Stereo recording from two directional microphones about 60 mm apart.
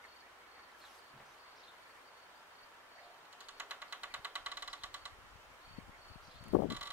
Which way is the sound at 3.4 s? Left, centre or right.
Right.